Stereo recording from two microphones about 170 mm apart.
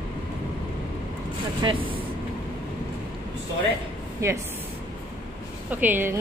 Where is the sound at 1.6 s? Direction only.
30° right (ahead or behind).